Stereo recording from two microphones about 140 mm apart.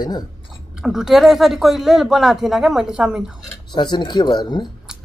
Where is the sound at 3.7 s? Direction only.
35° left (ahead or behind).